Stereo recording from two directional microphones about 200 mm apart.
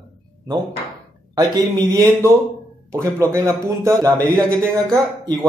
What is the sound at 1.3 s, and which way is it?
A man's voice, 15° right (ahead or behind).